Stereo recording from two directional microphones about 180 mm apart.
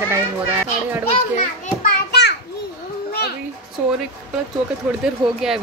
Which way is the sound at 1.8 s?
65° left (ahead or behind).